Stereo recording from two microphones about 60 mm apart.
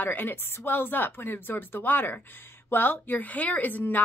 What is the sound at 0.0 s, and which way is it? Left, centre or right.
A woman's voice, left.